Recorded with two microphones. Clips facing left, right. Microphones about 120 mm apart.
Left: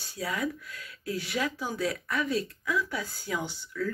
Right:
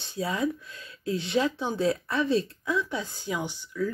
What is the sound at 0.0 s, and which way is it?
Speech, 25° right (ahead or behind).